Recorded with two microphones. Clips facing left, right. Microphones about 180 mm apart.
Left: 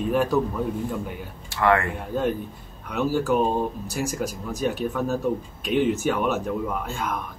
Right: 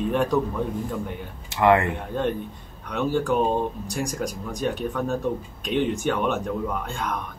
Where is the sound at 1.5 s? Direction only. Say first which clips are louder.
Right 3 dB; 20° right (ahead or behind).